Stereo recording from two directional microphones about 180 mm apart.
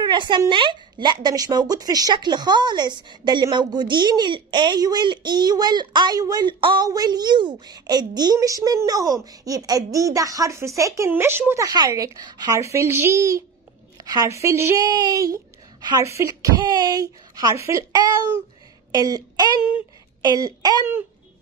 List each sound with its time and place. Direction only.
0.0 s a woman's voice: 25° right (ahead or behind)